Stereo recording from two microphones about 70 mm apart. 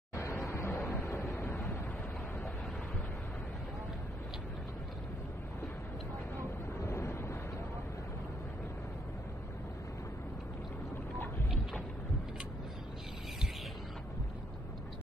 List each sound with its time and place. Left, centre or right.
0.1 s a sound: left
1.1 s vehicle: left
6.8 s wind noise: left